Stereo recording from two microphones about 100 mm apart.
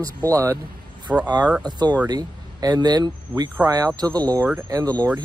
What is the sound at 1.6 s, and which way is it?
Speech, 45° right (ahead or behind).